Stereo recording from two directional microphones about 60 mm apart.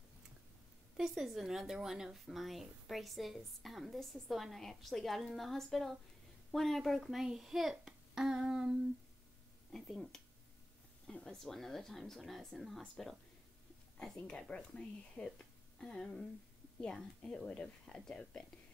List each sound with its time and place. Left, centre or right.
0.9 s speech: centre
7.7 s a sound: centre
9.7 s speech: centre
11.2 s speech: centre
14.2 s speech: centre